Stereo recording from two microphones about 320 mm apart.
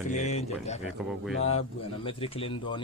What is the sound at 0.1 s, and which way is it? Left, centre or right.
Speech, left.